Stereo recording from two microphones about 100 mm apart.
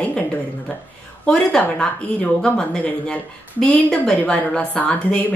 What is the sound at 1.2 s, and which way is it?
A woman's voice, 10° left (ahead or behind).